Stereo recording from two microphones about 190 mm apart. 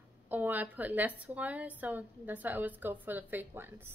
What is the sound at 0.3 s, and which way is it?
A woman's voice, 10° right (ahead or behind).